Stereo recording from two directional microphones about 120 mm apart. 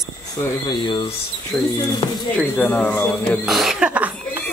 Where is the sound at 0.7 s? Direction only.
40° left (ahead or behind).